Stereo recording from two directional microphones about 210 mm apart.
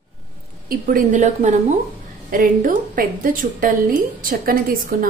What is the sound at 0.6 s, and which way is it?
A woman's voice, 45° right (ahead or behind).